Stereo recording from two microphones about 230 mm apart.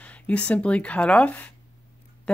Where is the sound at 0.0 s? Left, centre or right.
Centre.